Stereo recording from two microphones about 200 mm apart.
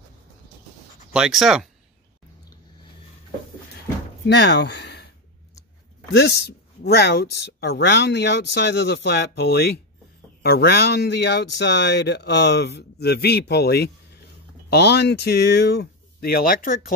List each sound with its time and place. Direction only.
1.1 s speech: 5° right (ahead or behind)
4.3 s speech: 60° left (ahead or behind)
6.1 s speech: 55° left (ahead or behind)